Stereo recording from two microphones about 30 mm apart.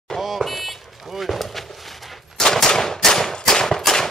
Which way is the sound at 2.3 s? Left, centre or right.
Centre.